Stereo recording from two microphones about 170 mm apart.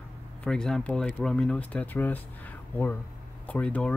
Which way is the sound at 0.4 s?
5° left (ahead or behind).